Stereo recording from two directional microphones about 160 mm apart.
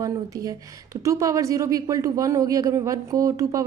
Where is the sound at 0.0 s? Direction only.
20° right (ahead or behind).